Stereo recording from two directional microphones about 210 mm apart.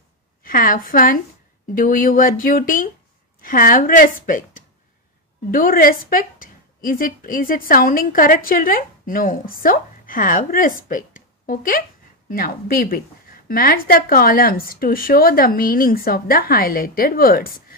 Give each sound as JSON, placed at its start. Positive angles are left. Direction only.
{"t": 0.4, "sound": "a woman's voice", "side_deg": 40}
{"t": 10.9, "sound": "a sound", "side_deg": 40}
{"t": 12.3, "sound": "speech", "side_deg": 45}